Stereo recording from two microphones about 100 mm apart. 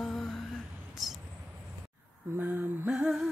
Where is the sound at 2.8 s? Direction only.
5° right (ahead or behind).